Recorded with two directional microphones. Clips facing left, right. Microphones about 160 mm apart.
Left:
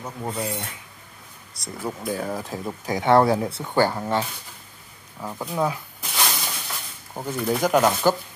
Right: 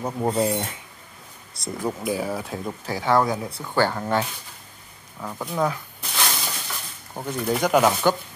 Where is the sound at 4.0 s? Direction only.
5° left (ahead or behind).